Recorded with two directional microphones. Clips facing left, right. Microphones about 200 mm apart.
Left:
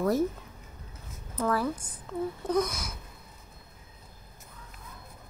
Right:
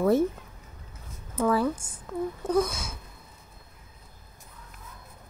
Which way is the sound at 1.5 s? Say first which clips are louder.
Right 3 dB; 25° right (ahead or behind).